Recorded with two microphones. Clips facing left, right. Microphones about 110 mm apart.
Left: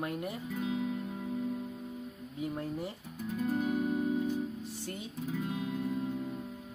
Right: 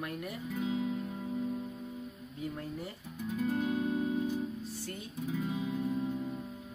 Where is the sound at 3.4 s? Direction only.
5° left (ahead or behind).